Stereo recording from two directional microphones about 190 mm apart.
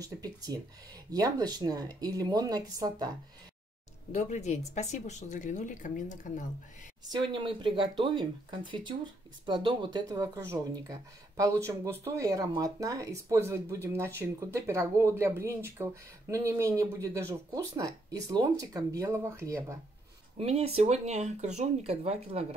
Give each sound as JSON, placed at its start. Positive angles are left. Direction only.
{"t": 0.0, "sound": "speech", "side_deg": -20}
{"t": 4.1, "sound": "speech", "side_deg": 35}
{"t": 7.1, "sound": "speech", "side_deg": -25}
{"t": 20.3, "sound": "speech", "side_deg": -30}